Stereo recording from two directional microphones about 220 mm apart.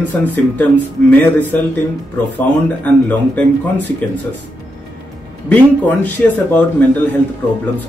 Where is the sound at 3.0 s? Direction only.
5° left (ahead or behind).